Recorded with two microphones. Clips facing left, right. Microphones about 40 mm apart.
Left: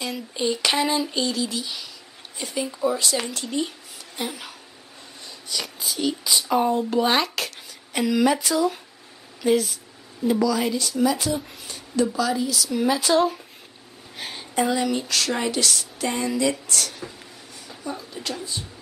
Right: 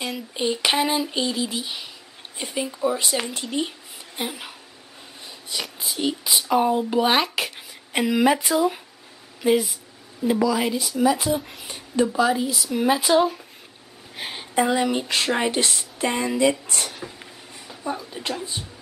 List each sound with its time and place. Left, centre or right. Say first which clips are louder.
0.3 s a woman's voice: right 1 dB; right
5.6 s speech: even; centre; by 16.9 s right
17.9 s speech: right 2 dB; centre